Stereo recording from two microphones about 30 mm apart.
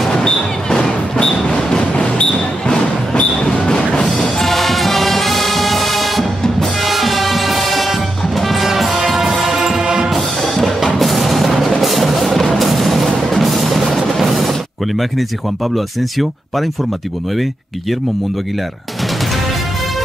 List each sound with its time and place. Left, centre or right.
0.1 s a sound: left
1.5 s music: left
1.9 s a sound: left
4.5 s music: centre
10.1 s music: centre
15.7 s speech: centre